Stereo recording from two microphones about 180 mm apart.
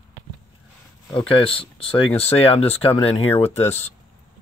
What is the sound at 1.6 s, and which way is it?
Speech, 30° left (ahead or behind).